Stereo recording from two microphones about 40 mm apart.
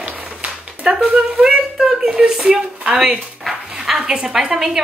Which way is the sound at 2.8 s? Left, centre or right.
Right.